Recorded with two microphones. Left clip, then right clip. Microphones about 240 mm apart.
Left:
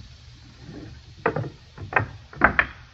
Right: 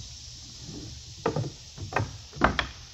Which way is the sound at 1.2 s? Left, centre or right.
Right.